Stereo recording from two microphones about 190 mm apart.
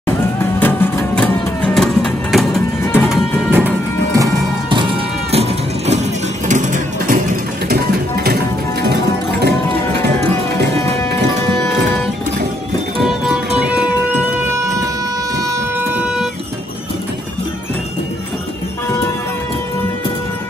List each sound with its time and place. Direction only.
0.0 s music: 10° left (ahead or behind); by 7.2 s 40° right (ahead or behind)
7.6 s music: 55° right (ahead or behind)
13.0 s music: 5° right (ahead or behind)
14.5 s a sound: 15° right (ahead or behind)